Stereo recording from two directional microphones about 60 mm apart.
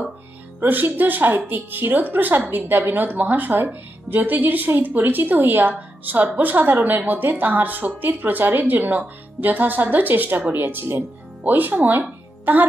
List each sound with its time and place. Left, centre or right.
0.6 s speech: right